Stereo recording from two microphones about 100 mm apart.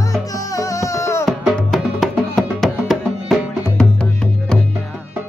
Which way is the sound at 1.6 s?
5° left (ahead or behind).